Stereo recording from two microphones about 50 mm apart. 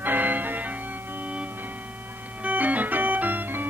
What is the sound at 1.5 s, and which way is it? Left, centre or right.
Organ, right.